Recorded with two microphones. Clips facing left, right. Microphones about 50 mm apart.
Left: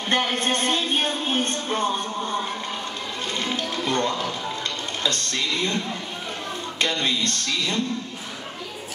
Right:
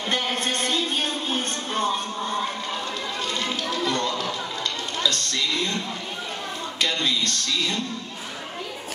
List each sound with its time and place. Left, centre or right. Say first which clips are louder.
0.1 s music: left 4 dB; left
3.3 s a sound: left 3 dB; left
3.7 s music: left 1 dB; left
5.0 s speech: even; left
6.8 s speech: left 1 dB; left